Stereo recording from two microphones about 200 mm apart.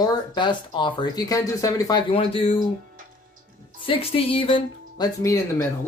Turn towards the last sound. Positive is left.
turn(degrees=15)  # may be behind; listen again after turning